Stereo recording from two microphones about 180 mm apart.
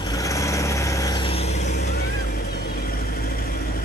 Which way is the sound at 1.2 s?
35° left (ahead or behind).